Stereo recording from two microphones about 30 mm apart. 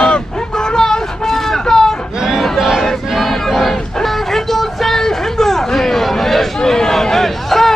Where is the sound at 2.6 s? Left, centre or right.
Centre.